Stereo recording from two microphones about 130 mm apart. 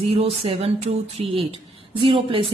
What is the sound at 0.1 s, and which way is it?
A woman's voice, 45° right (ahead or behind).